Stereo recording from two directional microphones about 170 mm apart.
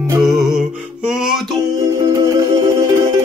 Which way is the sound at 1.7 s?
20° right (ahead or behind).